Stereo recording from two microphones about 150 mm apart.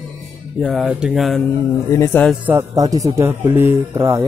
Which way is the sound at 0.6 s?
Centre (ahead or behind).